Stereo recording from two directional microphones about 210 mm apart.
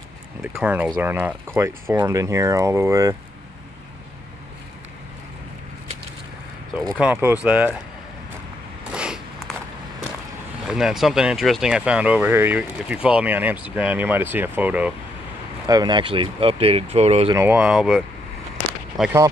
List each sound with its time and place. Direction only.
0.4 s speech: 5° right (ahead or behind)
7.0 s speech: 10° right (ahead or behind)
8.9 s a sound: 5° right (ahead or behind)
10.7 s speech: 5° right (ahead or behind)
15.6 s speech: 20° right (ahead or behind)
17.3 s speech: 10° right (ahead or behind)